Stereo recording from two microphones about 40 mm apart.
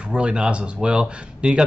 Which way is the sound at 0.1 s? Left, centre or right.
Right.